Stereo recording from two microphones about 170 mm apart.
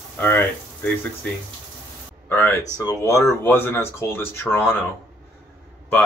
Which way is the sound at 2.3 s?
15° left (ahead or behind).